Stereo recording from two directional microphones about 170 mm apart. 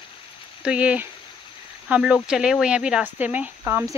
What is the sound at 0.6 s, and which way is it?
Speech, 5° right (ahead or behind).